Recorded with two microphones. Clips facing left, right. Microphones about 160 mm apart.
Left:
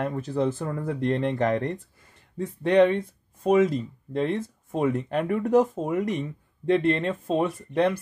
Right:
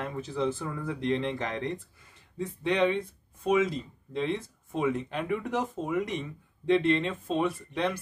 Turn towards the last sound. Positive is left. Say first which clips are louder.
# left 5 dB
turn(degrees=45)  # may be behind; listen again after turning